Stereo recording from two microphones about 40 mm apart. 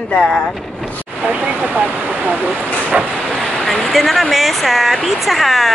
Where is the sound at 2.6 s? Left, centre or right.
Left.